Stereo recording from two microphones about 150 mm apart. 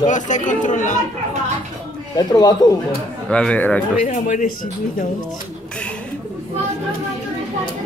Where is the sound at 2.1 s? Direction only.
25° left (ahead or behind).